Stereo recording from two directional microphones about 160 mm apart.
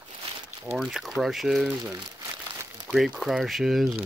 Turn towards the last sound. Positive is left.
turn(degrees=0)  # may be behind; listen again after turning